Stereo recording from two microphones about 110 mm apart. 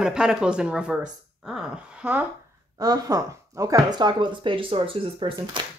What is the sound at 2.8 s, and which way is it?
Speech, 35° right (ahead or behind).